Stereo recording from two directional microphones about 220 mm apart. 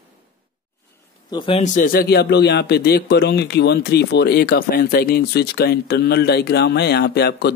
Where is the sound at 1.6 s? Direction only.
40° left (ahead or behind).